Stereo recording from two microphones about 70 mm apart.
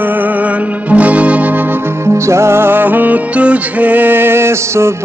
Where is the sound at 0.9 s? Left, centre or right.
Right.